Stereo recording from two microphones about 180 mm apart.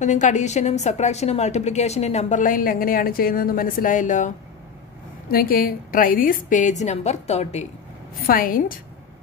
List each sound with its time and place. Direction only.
0.0 s a woman's voice: 40° left (ahead or behind)
5.3 s a woman's voice: 55° left (ahead or behind); by 7.6 s 35° left (ahead or behind)
8.3 s a woman's voice: 50° left (ahead or behind)